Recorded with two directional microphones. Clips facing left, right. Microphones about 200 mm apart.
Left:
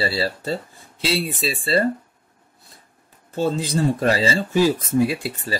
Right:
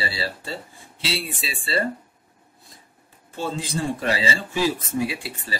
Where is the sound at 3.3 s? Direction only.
40° left (ahead or behind).